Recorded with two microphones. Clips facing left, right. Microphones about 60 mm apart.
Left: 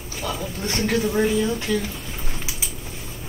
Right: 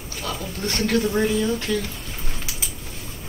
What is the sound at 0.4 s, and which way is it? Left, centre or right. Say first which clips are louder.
Speech: right 1 dB; centre.